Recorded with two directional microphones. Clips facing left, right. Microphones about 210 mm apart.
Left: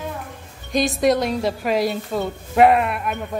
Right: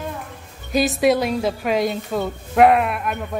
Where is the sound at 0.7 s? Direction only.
5° right (ahead or behind).